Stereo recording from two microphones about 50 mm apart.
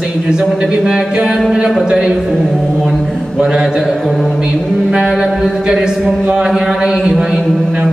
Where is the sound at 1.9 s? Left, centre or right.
Centre.